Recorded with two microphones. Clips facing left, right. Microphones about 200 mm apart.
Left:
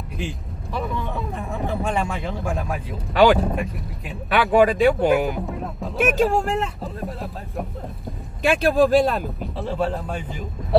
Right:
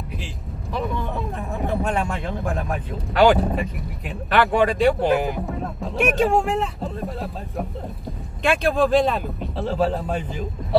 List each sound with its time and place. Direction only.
0.7 s speech: centre (ahead or behind)